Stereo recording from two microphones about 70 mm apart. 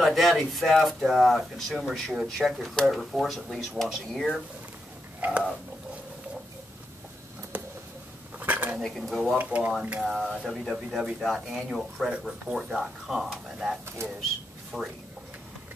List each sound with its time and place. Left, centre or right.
0.0 s speech: centre
5.2 s speech: right
7.5 s a sound: right
8.4 s dishes: right
8.8 s speech: centre
9.4 s speech: centre
10.0 s speech: centre